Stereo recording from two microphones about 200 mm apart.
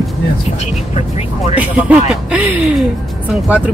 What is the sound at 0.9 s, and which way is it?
Speech, 30° left (ahead or behind).